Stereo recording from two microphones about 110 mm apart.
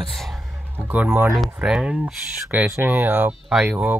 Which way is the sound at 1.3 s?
Centre (ahead or behind).